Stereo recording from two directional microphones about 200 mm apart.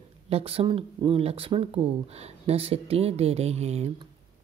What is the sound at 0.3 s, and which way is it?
A woman's voice, 30° right (ahead or behind).